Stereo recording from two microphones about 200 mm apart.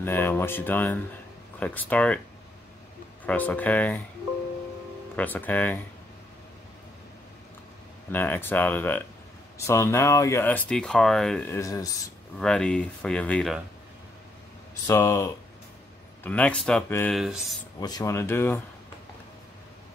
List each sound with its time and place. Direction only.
0.0 s speech: 10° left (ahead or behind)
3.3 s speech: 10° left (ahead or behind)
5.1 s speech: 10° left (ahead or behind)
8.1 s speech: 10° left (ahead or behind)
11.5 s speech: 15° left (ahead or behind)
12.4 s speech: 5° left (ahead or behind)
14.9 s speech: 15° left (ahead or behind)
16.3 s speech: 5° left (ahead or behind)
17.7 s speech: 20° left (ahead or behind)